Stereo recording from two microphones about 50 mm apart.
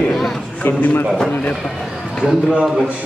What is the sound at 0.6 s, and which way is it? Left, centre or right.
Speech, left.